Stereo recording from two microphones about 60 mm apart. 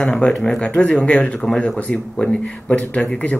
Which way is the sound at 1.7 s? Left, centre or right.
Left.